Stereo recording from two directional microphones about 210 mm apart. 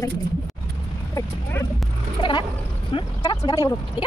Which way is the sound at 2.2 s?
25° left (ahead or behind).